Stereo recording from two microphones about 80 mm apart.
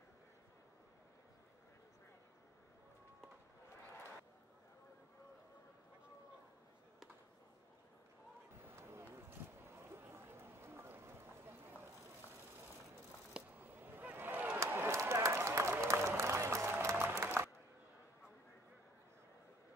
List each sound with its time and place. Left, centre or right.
8.7 s run: right
13.6 s honk: right
14.7 s run: right
16.9 s applause: right